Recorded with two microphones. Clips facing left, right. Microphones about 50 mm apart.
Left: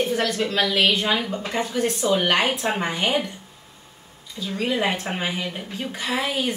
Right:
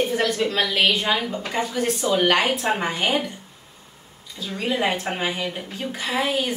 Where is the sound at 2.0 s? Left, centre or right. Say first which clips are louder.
Right 2 dB; centre.